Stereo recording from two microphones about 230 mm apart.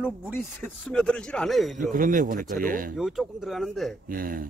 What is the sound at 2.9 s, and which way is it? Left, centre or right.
Speech, centre.